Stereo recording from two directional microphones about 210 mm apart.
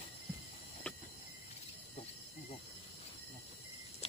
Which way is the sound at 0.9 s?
5° left (ahead or behind).